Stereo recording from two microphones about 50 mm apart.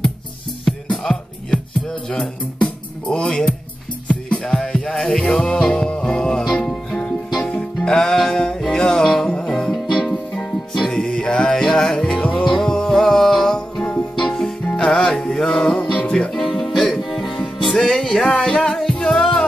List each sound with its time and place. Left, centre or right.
0.7 s music: centre; by 4.5 s left
4.5 s music: centre
10.9 s music: centre
16.3 s music: centre
17.0 s music: centre